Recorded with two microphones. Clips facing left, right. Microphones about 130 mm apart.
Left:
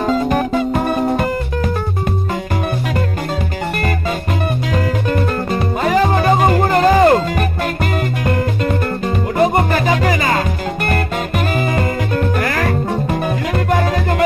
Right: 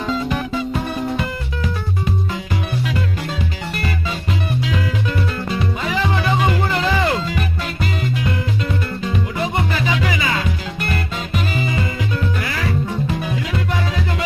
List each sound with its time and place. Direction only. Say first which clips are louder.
0.0 s music: left 6 dB; 45° left (ahead or behind)
4.7 s music: left 5 dB; 50° left (ahead or behind)
9.0 s music: left 9 dB; 50° left (ahead or behind)